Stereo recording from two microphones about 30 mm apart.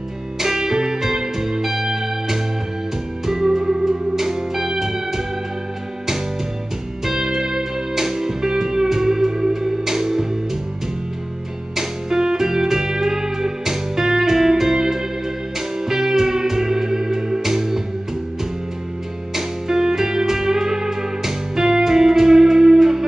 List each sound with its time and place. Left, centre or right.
0.4 s music: centre
7.1 s music: centre
11.7 s music: centre
19.3 s music: centre